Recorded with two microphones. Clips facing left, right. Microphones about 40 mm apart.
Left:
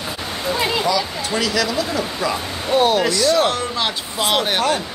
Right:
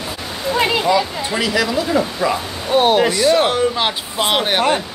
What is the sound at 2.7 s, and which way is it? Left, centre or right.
Speech, right.